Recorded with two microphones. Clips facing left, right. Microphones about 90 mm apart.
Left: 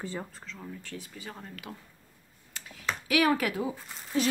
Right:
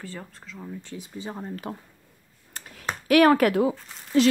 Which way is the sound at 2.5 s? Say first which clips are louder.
Right 2 dB; 45° right (ahead or behind).